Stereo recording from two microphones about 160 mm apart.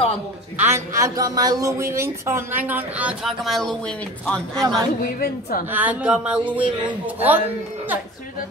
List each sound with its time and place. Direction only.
0.6 s a woman's voice: 15° right (ahead or behind); by 4.6 s 5° left (ahead or behind)
5.0 s a woman's voice: 70° left (ahead or behind)
5.7 s a woman's voice: 10° right (ahead or behind)